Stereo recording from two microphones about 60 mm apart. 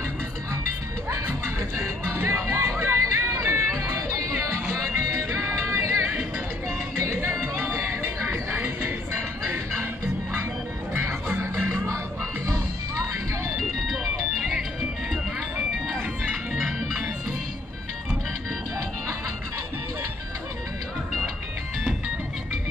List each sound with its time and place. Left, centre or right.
1.1 s music: right
4.9 s music: right
7.1 s music: right
10.9 s music: right
13.6 s music: centre
16.6 s music: centre